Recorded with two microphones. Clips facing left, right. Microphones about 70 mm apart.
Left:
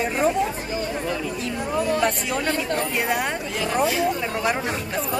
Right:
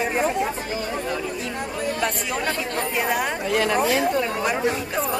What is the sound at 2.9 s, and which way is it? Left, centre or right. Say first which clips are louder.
Speech: right 3 dB; centre.